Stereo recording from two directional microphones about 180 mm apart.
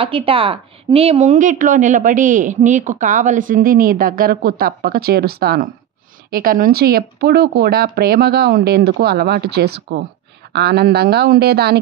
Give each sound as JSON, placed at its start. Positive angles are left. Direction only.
{"t": 0.0, "sound": "speech", "side_deg": -30}